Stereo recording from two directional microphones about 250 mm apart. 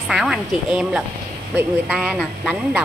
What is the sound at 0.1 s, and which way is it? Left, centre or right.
A man's voice, centre.